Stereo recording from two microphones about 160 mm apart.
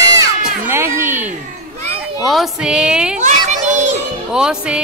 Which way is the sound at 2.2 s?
Centre (ahead or behind).